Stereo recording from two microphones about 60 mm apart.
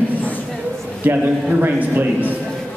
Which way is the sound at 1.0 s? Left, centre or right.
Right.